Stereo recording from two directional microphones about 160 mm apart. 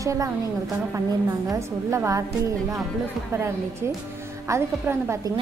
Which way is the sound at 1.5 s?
20° right (ahead or behind).